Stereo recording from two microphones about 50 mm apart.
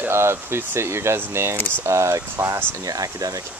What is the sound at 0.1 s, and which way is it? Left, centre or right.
Speech, right.